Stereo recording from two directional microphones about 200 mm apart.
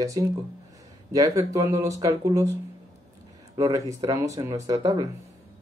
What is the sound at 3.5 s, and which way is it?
Speech, 15° right (ahead or behind).